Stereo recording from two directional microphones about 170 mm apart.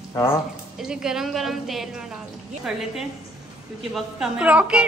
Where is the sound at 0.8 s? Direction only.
5° right (ahead or behind).